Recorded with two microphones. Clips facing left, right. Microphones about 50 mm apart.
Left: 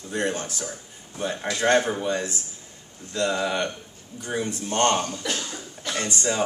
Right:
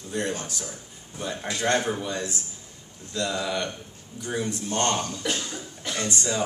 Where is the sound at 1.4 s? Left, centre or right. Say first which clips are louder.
Left 4 dB; centre.